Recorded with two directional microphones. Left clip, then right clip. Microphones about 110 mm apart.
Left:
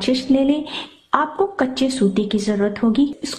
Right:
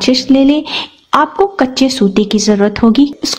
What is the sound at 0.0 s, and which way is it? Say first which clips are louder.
A woman's voice: right 8 dB; 30° right (ahead or behind).